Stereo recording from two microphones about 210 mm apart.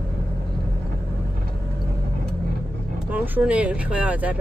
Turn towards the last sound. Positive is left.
turn(degrees=-5)  # may be behind; listen again after turning